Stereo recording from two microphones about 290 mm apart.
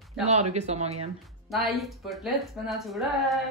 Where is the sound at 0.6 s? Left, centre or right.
Right.